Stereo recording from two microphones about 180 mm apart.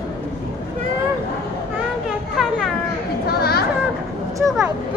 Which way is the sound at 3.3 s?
60° left (ahead or behind).